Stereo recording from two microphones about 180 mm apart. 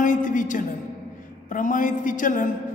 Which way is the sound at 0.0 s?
45° left (ahead or behind).